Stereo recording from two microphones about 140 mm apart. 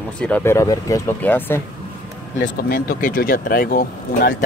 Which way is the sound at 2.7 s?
90° left.